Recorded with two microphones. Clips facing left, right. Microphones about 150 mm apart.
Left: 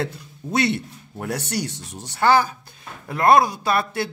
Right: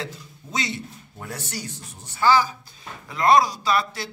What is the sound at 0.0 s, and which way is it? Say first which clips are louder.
A man's voice: left 7 dB; 60° left (ahead or behind).